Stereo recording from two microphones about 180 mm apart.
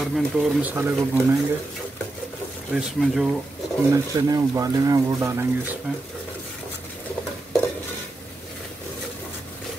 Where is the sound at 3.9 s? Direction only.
20° right (ahead or behind).